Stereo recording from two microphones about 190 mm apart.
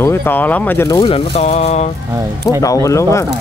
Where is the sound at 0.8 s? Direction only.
25° left (ahead or behind).